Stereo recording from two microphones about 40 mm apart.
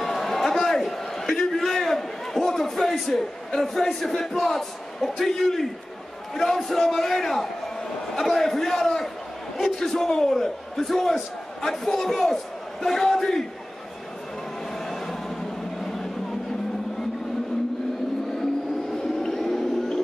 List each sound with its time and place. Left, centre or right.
0.0 s a sound: centre
6.3 s a man's voice: centre
14.9 s train: centre
15.8 s vehicle: centre
19.2 s vehicle: centre